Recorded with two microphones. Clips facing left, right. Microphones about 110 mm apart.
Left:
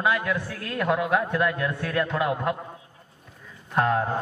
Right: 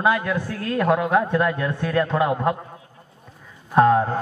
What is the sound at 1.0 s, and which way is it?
Speech, 5° right (ahead or behind).